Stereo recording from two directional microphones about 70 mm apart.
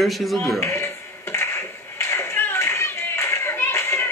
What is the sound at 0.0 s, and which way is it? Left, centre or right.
Speech, centre.